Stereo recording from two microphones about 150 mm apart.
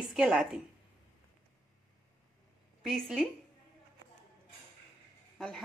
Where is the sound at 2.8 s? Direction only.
Centre (ahead or behind).